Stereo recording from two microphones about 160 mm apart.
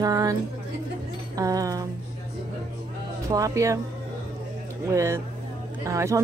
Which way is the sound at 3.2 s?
20° right (ahead or behind).